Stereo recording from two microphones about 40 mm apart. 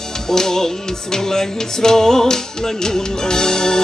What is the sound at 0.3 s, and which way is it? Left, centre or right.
Speech, centre.